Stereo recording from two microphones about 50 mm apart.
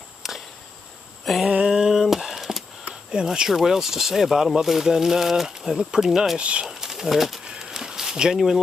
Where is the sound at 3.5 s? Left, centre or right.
Centre.